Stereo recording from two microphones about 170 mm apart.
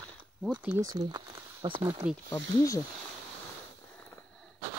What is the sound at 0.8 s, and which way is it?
Speech, 25° right (ahead or behind).